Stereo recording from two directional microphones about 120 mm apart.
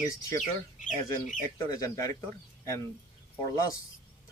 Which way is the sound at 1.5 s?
30° left (ahead or behind).